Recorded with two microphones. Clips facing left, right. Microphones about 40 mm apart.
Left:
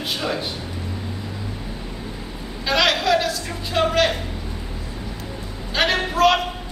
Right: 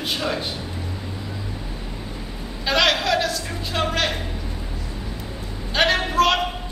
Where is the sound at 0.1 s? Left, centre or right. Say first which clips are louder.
Even; centre.